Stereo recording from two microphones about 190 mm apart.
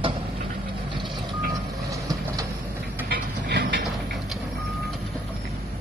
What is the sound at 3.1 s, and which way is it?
Vehicle, 55° right (ahead or behind).